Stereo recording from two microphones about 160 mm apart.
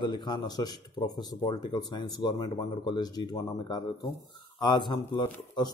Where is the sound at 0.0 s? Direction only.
25° left (ahead or behind).